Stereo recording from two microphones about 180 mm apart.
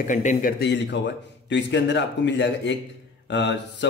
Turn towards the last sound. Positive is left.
turn(degrees=75)  # may be behind; listen again after turning